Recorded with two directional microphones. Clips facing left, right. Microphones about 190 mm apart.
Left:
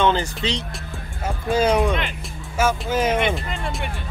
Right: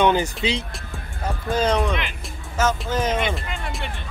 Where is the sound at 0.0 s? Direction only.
15° right (ahead or behind).